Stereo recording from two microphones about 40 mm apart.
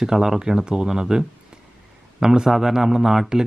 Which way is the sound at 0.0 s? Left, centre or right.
Centre.